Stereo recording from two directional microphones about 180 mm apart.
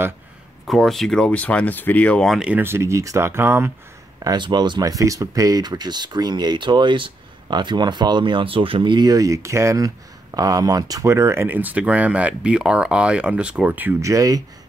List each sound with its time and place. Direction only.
0.7 s speech: centre (ahead or behind); by 14.4 s 20° right (ahead or behind)